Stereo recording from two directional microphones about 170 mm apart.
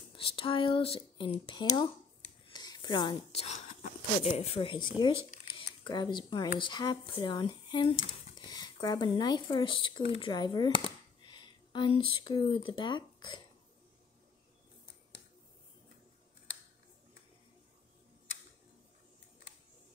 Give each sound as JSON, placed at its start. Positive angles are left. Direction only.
{"t": 0.1, "sound": "speech", "side_deg": 30}